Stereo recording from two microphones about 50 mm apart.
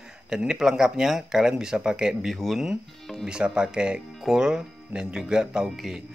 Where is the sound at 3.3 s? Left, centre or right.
Centre.